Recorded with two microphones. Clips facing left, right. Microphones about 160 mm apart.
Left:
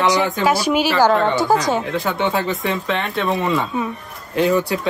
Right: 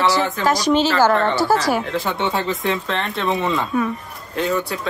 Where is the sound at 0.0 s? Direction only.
15° left (ahead or behind).